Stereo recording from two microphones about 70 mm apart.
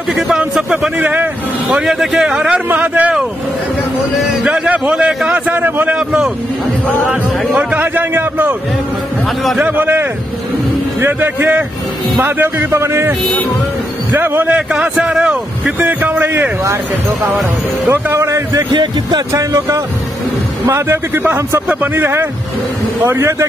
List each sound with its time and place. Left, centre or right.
0.4 s a man's voice: centre
1.8 s a man's voice: centre
2.7 s a man's voice: right
4.5 s a man's voice: centre
5.9 s a man's voice: centre
7.1 s a man's voice: centre
9.6 s a man's voice: right
14.1 s a man's voice: right
14.7 s a man's voice: centre; by 16.4 s right
18.2 s speech: right
18.7 s speech: right
20.6 s speech: right